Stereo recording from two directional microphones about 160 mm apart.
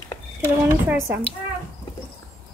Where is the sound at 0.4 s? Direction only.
15° right (ahead or behind).